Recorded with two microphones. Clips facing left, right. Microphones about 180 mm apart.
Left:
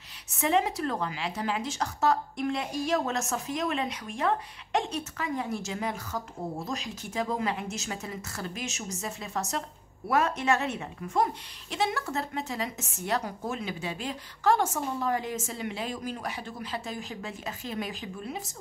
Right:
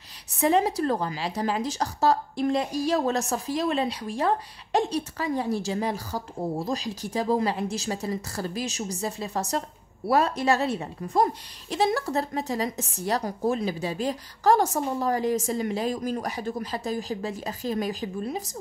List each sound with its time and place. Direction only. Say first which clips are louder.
0.3 s speech: right 4 dB; 35° right (ahead or behind)